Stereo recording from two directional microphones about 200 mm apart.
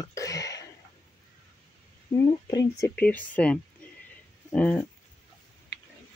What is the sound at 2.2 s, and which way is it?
Speech, 15° left (ahead or behind).